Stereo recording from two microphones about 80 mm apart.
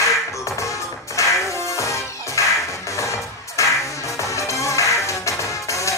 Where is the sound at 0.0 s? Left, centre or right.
Left.